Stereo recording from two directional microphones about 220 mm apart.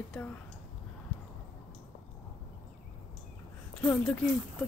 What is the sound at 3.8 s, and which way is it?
Speech, 5° left (ahead or behind).